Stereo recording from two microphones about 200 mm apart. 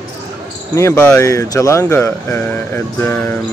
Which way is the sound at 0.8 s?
10° left (ahead or behind).